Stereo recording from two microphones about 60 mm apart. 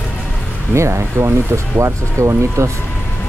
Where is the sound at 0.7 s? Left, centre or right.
Right.